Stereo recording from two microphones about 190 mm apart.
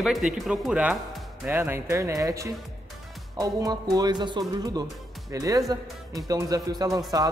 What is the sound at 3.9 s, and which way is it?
Speech, 20° right (ahead or behind).